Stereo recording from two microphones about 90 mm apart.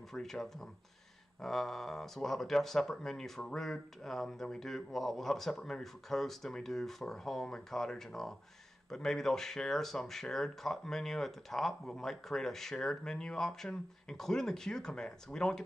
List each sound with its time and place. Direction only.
0.1 s speech: 5° left (ahead or behind)